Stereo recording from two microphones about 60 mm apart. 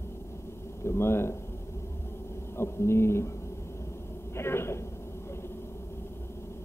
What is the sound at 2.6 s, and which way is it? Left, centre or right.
Speech, left.